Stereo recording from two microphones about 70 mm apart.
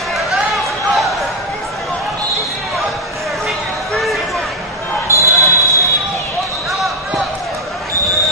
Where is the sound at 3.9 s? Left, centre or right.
Centre.